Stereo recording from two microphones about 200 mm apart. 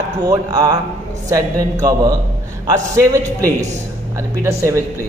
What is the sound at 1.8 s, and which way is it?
A man's voice, 20° right (ahead or behind).